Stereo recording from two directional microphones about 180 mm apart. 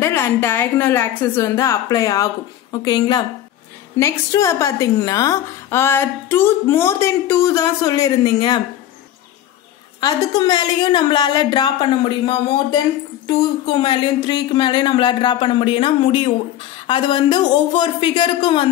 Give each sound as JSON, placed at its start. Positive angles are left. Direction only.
{"t": 0.0, "sound": "a woman's voice", "side_deg": 15}
{"t": 9.9, "sound": "speech", "side_deg": 20}